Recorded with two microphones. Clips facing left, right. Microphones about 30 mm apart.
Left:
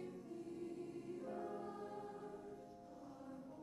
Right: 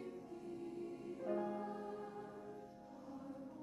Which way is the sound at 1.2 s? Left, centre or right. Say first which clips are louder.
Right 9 dB; right.